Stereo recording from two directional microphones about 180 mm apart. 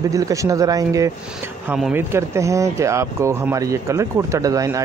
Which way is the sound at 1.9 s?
15° right (ahead or behind).